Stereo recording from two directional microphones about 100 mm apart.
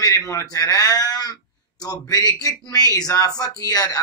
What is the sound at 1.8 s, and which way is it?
A man's voice, 40° left (ahead or behind).